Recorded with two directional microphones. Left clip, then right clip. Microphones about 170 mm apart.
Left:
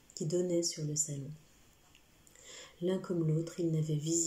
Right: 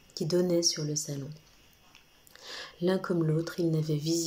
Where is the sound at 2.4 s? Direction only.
15° left (ahead or behind).